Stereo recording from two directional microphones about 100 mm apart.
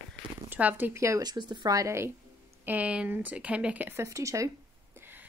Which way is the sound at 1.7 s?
30° right (ahead or behind).